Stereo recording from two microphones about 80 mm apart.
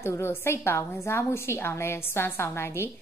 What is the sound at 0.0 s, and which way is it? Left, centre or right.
A woman's voice, left.